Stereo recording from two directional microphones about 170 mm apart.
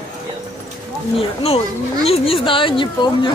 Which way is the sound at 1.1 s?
35° left (ahead or behind).